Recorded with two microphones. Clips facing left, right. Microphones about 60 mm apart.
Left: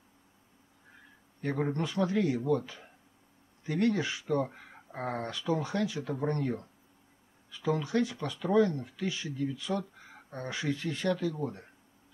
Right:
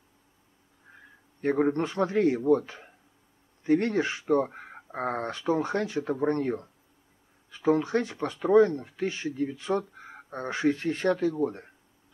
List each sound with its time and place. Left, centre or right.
1.4 s speech: right